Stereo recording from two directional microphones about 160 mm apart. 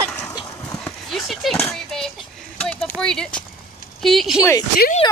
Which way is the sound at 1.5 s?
5° left (ahead or behind).